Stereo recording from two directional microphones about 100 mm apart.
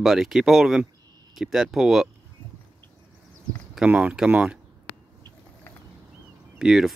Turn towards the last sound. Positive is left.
turn(degrees=-5)  # may be behind; listen again after turning